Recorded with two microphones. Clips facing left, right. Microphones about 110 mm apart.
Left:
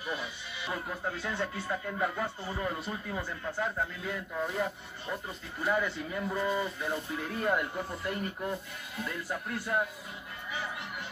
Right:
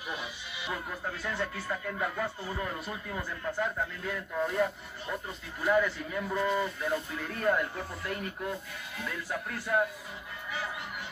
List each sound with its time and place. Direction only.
0.1 s music: 20° right (ahead or behind)
0.7 s music: 5° left (ahead or behind)
1.1 s speech: centre (ahead or behind)